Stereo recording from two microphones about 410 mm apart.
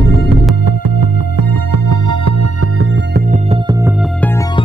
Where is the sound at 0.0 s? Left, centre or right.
Right.